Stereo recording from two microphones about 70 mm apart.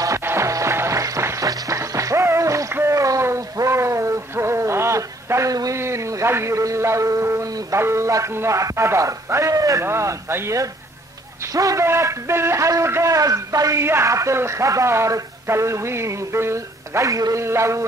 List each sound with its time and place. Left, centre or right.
0.2 s music: right
0.5 s music: right
2.7 s a sound: right
7.7 s speech: right
9.8 s a man's voice: right
11.5 s speech: right
11.8 s a man's voice: right
13.1 s speech: right
13.8 s speech: right